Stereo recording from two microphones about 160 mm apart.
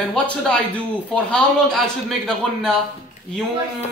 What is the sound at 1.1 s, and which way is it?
A man's voice, 5° left (ahead or behind).